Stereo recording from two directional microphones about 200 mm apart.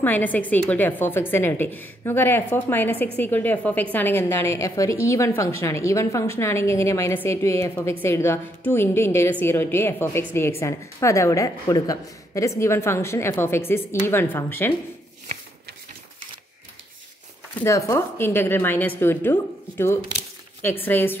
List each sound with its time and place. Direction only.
0.0 s a woman's voice: 10° left (ahead or behind)
17.6 s a woman's voice: 15° left (ahead or behind)